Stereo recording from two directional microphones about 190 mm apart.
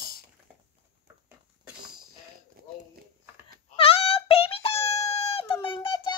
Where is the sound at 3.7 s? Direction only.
30° left (ahead or behind).